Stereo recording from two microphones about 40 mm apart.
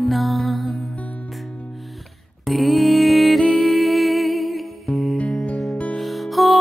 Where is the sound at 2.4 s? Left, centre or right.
Centre.